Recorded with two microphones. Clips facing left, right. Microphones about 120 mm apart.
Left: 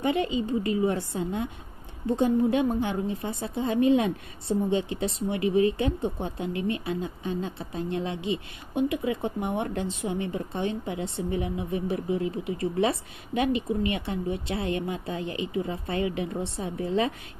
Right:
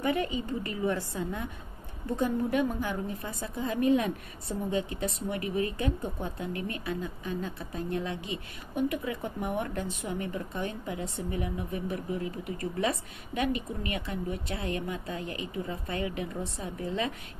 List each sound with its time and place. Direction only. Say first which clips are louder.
0.0 s a woman's voice: left 4 dB; 25° left (ahead or behind)
5.3 s speech: left 9 dB; 40° right (ahead or behind)
5.7 s a woman's voice: left 5 dB; 25° left (ahead or behind)